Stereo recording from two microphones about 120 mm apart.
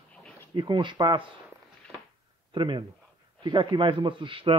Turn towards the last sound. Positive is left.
turn(degrees=-45)  # may be behind; listen again after turning